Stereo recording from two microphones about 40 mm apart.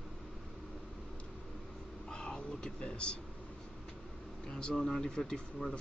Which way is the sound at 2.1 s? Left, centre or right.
Left.